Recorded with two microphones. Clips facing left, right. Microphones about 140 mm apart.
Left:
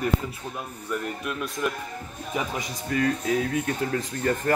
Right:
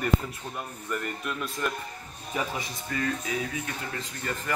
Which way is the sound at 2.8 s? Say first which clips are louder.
Left 7 dB; 45° left (ahead or behind).